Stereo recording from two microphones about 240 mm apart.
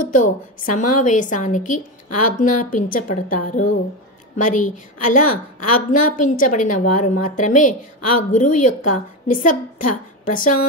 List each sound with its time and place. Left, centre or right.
0.0 s a woman's voice: left